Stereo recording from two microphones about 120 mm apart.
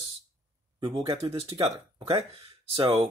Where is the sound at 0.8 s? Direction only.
45° right (ahead or behind).